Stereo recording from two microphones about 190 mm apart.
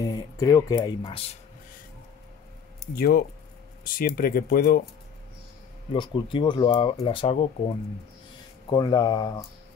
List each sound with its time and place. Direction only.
0.0 s speech: 20° left (ahead or behind)
3.0 s speech: 55° left (ahead or behind)
5.9 s speech: 25° left (ahead or behind)
8.6 s speech: 20° left (ahead or behind)